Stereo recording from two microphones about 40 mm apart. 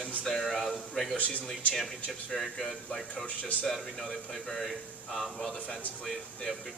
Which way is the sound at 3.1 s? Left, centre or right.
Left.